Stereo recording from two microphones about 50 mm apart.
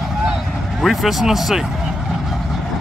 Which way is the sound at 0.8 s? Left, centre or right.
Centre.